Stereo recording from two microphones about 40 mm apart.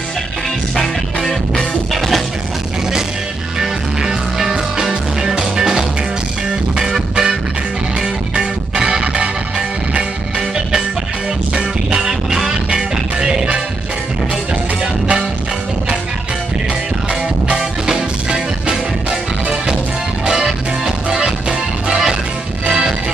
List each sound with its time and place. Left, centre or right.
3.5 s music: centre
8.4 s music: centre
11.5 s music: centre
17.6 s music: centre
20.2 s music: centre